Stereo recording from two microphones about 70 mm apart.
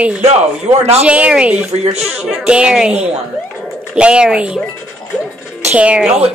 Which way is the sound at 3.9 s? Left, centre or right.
Centre.